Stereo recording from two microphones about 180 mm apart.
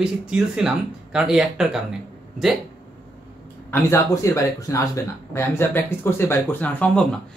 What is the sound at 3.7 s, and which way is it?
Speech, 10° left (ahead or behind).